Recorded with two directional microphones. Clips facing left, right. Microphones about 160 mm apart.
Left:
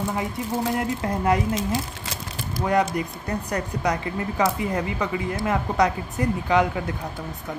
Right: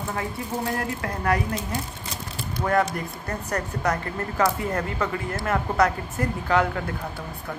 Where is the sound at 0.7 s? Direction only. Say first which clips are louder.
Left 4 dB; 20° left (ahead or behind).